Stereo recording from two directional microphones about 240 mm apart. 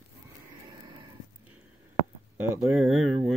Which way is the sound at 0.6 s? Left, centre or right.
Centre.